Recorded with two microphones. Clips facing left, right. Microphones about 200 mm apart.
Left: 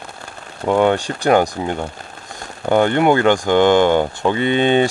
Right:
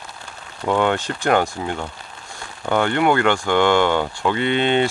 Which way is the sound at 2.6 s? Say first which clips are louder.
Left 4 dB; 10° left (ahead or behind).